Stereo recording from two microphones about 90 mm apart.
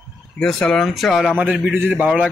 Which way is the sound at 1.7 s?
20° right (ahead or behind).